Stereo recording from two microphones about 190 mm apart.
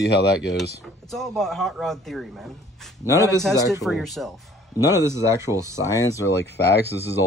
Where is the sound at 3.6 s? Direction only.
20° left (ahead or behind).